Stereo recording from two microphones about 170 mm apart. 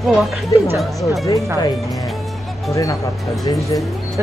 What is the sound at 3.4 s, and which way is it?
Speech, 20° left (ahead or behind).